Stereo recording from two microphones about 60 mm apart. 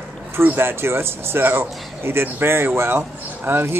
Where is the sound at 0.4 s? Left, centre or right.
Right.